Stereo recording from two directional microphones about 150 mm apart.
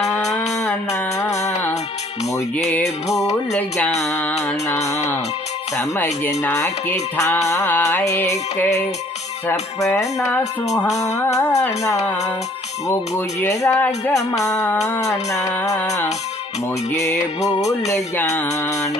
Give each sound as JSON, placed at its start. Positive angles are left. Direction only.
{"t": 0.0, "sound": "music", "side_deg": 20}
{"t": 3.5, "sound": "music", "side_deg": 10}
{"t": 6.0, "sound": "music", "side_deg": 15}
{"t": 7.4, "sound": "speech", "side_deg": 15}
{"t": 9.9, "sound": "music", "side_deg": 20}
{"t": 11.0, "sound": "speech", "side_deg": 20}
{"t": 14.3, "sound": "music", "side_deg": 20}
{"t": 15.0, "sound": "speech", "side_deg": 20}
{"t": 17.4, "sound": "music", "side_deg": 50}
{"t": 17.8, "sound": "speech", "side_deg": 20}